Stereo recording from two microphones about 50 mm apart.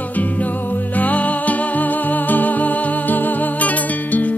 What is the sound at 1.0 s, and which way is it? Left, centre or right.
Music, left.